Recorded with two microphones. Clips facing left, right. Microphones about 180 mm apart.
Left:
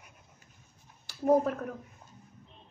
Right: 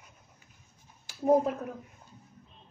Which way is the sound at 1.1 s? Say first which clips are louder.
Right 1 dB; 10° right (ahead or behind).